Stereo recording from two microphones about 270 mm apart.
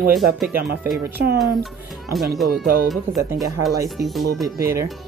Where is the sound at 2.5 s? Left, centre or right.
Right.